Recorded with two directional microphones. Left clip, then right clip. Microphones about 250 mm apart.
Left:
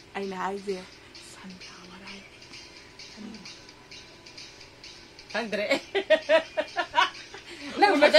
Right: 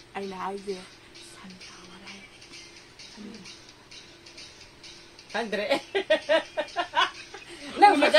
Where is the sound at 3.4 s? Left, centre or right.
Centre.